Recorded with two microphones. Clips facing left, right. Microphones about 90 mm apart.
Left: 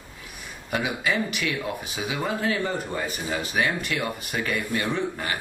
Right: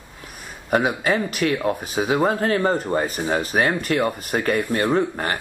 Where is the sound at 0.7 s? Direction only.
45° right (ahead or behind).